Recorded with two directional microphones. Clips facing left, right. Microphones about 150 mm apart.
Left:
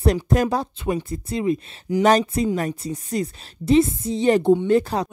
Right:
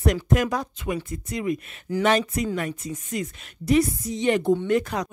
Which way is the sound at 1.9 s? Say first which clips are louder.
Left 4 dB; 15° left (ahead or behind).